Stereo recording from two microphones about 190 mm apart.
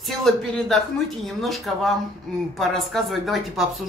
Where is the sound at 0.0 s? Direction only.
Centre (ahead or behind).